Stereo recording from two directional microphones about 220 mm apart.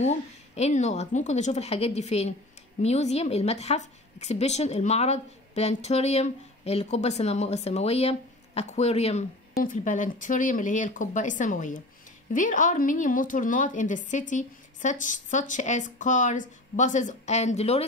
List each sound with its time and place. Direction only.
0.0 s a woman's voice: 30° left (ahead or behind)